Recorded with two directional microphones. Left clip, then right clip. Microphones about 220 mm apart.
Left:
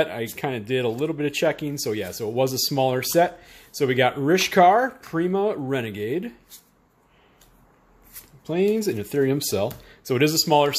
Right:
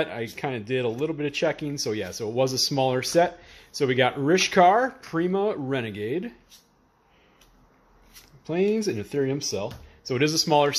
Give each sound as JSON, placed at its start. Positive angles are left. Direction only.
{"t": 0.0, "sound": "speech", "side_deg": 5}
{"t": 8.5, "sound": "speech", "side_deg": 5}
{"t": 9.5, "sound": "speech", "side_deg": 30}
{"t": 10.1, "sound": "speech", "side_deg": 10}